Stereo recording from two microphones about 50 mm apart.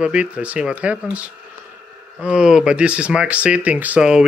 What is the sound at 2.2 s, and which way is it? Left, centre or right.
Speech, centre.